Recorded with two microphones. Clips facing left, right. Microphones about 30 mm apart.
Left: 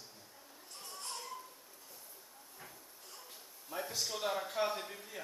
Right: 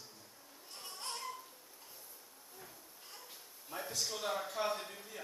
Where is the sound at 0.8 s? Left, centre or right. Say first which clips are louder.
Right 1 dB; right.